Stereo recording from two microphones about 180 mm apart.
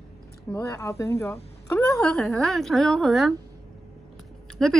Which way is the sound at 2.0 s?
5° left (ahead or behind).